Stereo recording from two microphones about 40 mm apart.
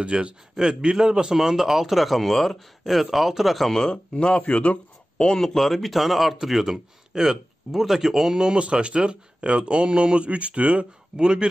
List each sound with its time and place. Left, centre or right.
0.0 s speech: right
0.6 s speech: centre
3.7 s speech: centre
4.1 s a man's voice: left
5.3 s speech: centre; by 11.4 s right